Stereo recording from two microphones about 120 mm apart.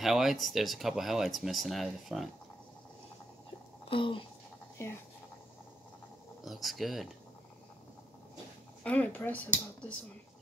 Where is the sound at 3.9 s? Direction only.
45° left (ahead or behind).